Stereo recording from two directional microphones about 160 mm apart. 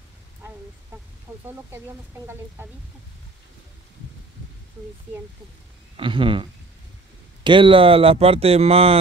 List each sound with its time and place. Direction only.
1.5 s speech: 15° right (ahead or behind)
5.9 s speech: 30° right (ahead or behind)
7.4 s speech: 30° right (ahead or behind)